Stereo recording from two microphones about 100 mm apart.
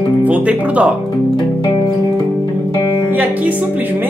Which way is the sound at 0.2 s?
15° right (ahead or behind).